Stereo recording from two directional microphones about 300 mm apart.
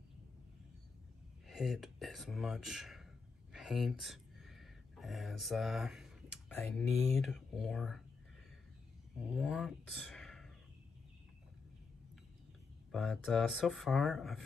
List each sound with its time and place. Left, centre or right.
1.5 s speech: centre
3.5 s a sound: centre
6.7 s speech: centre
9.3 s speech: centre
12.9 s speech: centre